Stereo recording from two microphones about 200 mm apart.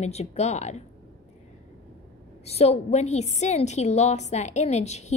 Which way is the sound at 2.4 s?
30° left (ahead or behind).